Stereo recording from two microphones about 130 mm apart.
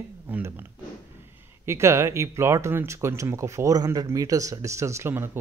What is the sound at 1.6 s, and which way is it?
Speech, 20° right (ahead or behind).